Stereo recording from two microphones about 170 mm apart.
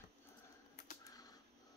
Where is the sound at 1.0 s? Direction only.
20° left (ahead or behind).